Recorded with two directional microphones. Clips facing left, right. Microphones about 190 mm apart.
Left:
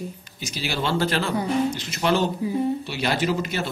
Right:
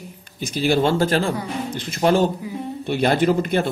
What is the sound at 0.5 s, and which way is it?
A woman's voice, 50° right (ahead or behind).